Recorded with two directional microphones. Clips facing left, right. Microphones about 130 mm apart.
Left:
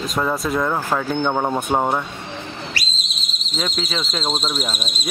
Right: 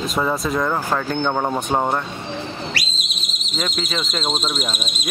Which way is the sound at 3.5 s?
Centre (ahead or behind).